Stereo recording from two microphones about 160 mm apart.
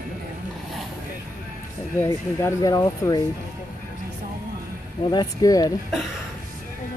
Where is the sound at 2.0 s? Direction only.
15° left (ahead or behind).